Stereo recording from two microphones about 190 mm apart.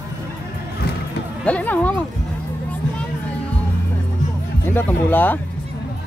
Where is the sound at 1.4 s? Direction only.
10° left (ahead or behind).